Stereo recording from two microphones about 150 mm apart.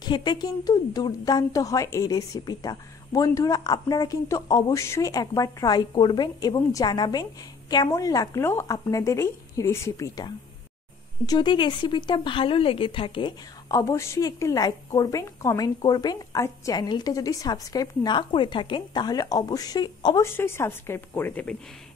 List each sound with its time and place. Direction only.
0.0 s speech: 30° left (ahead or behind)
13.7 s speech: 20° left (ahead or behind)
20.2 s a woman's voice: 15° left (ahead or behind)